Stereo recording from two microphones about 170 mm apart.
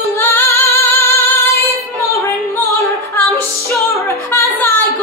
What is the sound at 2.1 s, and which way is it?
Music, 15° left (ahead or behind).